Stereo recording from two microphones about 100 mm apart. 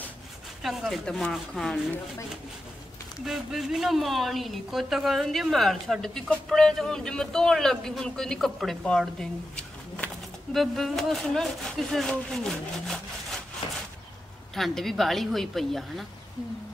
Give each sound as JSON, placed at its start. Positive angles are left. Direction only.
{"t": 0.6, "sound": "speech", "side_deg": 0}
{"t": 3.3, "sound": "speech", "side_deg": 0}
{"t": 13.6, "sound": "a sound", "side_deg": 60}
{"t": 14.5, "sound": "speech", "side_deg": 5}